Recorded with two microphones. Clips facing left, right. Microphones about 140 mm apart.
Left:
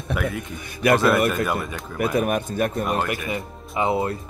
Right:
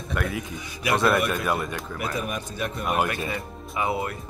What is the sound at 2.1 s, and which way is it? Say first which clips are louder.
Speech: left 10 dB; 60° left (ahead or behind).